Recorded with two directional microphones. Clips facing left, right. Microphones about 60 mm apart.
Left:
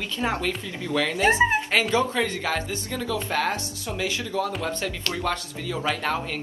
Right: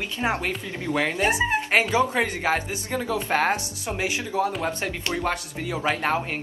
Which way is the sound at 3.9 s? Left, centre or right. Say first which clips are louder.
Right 1 dB; right.